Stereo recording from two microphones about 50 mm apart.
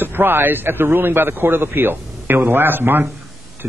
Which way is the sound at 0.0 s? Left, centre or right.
Right.